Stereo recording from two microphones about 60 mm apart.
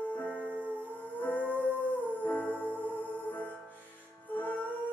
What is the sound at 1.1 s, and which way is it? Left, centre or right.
Music, left.